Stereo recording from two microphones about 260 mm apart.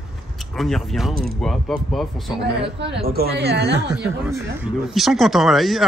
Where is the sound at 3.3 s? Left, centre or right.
Right.